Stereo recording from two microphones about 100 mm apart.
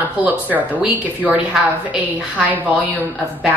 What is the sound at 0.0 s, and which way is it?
Speech, 15° right (ahead or behind).